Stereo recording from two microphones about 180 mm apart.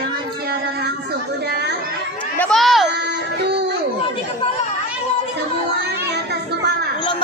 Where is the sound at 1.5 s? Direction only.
70° right (ahead or behind).